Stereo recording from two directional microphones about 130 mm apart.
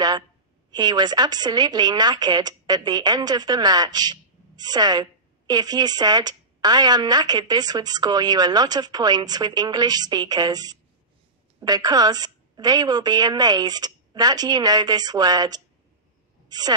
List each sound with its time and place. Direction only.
0.7 s a woman's voice: 30° right (ahead or behind)